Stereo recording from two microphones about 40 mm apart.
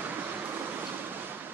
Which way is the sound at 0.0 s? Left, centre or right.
Right.